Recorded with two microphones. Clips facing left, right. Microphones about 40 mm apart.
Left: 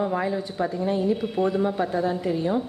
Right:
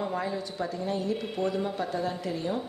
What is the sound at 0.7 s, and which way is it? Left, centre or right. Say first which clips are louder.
A woman's voice: left 7 dB; centre.